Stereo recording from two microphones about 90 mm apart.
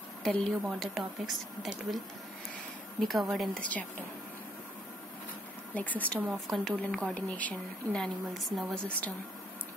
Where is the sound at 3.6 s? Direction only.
15° left (ahead or behind).